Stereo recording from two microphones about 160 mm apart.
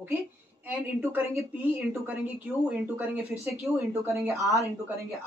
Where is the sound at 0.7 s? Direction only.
15° right (ahead or behind).